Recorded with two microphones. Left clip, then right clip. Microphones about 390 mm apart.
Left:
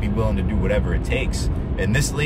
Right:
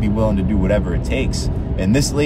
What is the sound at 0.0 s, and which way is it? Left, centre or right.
Speech, centre.